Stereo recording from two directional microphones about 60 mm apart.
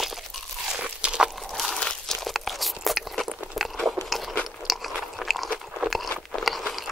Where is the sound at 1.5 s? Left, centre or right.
Centre.